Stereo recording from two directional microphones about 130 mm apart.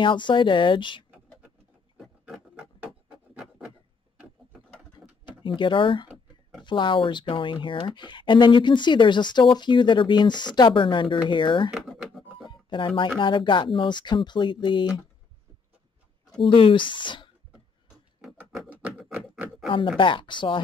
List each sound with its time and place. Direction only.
0.0 s speech: 40° left (ahead or behind)
2.0 s a sound: centre (ahead or behind)
2.5 s wood: 10° right (ahead or behind)
5.4 s speech: 40° left (ahead or behind)
11.7 s music: centre (ahead or behind)
12.4 s a sound: 35° left (ahead or behind)
13.2 s speech: 40° left (ahead or behind)
16.4 s speech: 40° left (ahead or behind)
18.7 s a sound: 10° right (ahead or behind)
20.0 s speech: 40° left (ahead or behind)